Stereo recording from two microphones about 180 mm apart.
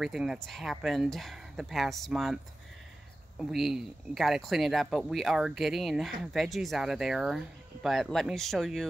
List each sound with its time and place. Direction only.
0.0 s speech: centre (ahead or behind)
3.3 s speech: centre (ahead or behind)